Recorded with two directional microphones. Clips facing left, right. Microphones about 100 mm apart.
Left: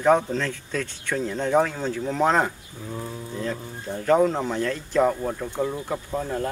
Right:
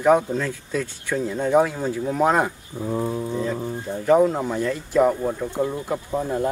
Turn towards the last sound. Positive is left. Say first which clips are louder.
# right 3 dB
turn(degrees=-10)  # may be behind; listen again after turning